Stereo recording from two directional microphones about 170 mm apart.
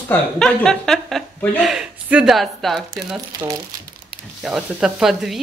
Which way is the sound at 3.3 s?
20° right (ahead or behind).